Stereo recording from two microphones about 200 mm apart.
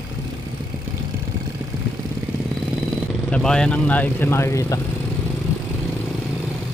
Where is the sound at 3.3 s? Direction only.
5° left (ahead or behind).